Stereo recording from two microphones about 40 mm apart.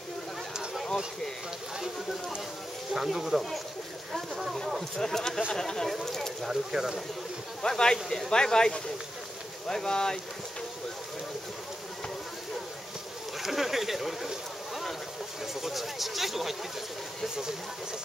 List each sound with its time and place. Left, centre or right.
2.9 s speech: centre
4.9 s speech: centre
6.4 s speech: centre
7.6 s speech: centre
13.4 s speech: centre
15.6 s speech: centre